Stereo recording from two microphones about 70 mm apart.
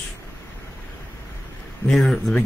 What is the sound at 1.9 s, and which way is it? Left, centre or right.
Speech, centre.